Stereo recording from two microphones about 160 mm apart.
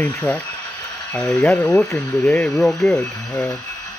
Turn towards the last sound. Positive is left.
turn(degrees=10)  # may be behind; listen again after turning